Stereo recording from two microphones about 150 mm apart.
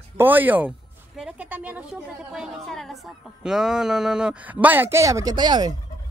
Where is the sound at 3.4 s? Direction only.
5° right (ahead or behind); by 5.7 s 30° right (ahead or behind).